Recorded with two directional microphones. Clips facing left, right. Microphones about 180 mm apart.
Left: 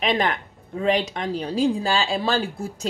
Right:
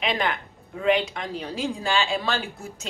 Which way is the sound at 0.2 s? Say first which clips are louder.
Left 3 dB; 40° left (ahead or behind).